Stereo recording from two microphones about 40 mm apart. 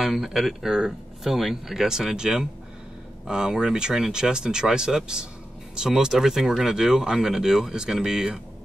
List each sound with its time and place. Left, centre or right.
0.0 s speech: centre